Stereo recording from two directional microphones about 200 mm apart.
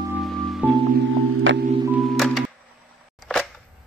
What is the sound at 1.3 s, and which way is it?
Music, 70° right (ahead or behind).